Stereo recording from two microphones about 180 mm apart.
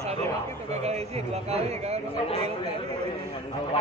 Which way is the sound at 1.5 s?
35° right (ahead or behind).